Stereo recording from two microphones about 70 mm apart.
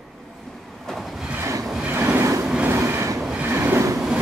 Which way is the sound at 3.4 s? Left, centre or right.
Right.